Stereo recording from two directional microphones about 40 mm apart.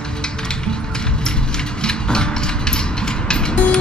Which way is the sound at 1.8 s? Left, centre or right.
Centre.